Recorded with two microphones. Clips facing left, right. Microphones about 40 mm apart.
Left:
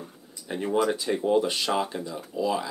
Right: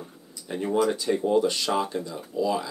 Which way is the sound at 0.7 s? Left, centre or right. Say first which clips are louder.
Right 1 dB; centre.